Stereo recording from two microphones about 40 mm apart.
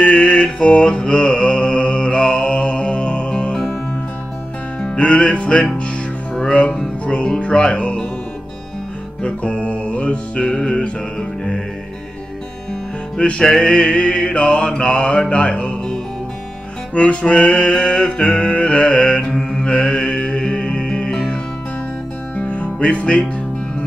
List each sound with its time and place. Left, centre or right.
0.0 s mantra: left
4.8 s music: left
7.1 s music: left
9.2 s music: left
13.2 s music: left
13.6 s mantra: left
16.9 s music: left
22.5 s music: left